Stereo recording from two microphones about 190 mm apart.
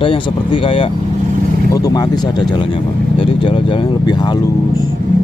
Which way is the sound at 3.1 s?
25° left (ahead or behind).